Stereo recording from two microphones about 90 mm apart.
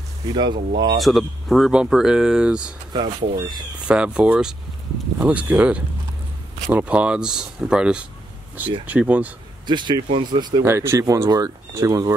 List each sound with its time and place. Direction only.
0.3 s speech: 50° right (ahead or behind)
0.9 s speech: centre (ahead or behind)
2.9 s speech: 55° right (ahead or behind)
3.8 s speech: 10° right (ahead or behind)
9.7 s speech: 55° right (ahead or behind)
10.6 s speech: 30° right (ahead or behind)